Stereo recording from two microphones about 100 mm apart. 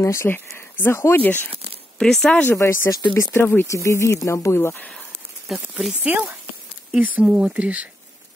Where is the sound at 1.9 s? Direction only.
5° left (ahead or behind).